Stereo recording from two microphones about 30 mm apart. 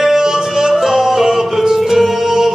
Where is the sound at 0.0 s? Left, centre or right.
Centre.